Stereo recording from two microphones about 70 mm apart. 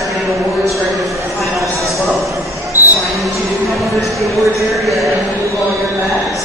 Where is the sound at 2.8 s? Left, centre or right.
Right.